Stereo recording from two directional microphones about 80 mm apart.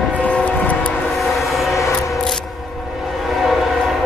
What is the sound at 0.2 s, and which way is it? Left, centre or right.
Train, centre.